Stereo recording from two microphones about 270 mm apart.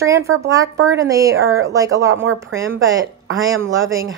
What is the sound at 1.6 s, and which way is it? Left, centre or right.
Speech, centre.